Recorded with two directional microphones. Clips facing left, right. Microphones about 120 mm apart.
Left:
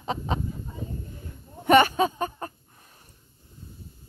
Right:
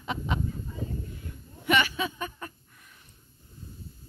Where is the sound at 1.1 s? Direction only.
45° left (ahead or behind).